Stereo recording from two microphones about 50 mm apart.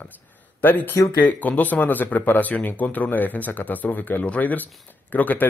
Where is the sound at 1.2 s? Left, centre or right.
Left.